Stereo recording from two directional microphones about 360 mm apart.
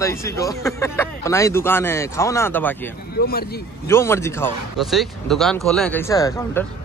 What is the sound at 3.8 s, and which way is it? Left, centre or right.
A man's voice, centre.